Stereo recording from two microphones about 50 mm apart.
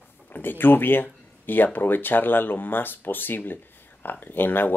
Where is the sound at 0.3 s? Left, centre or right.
Left.